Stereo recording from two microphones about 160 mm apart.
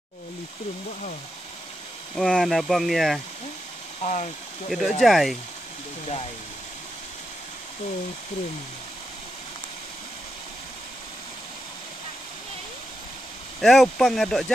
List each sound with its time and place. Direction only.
2.1 s speech: centre (ahead or behind)
4.0 s speech: 45° left (ahead or behind)
4.6 s speech: centre (ahead or behind)
6.0 s speech: 40° left (ahead or behind)
13.6 s speech: centre (ahead or behind)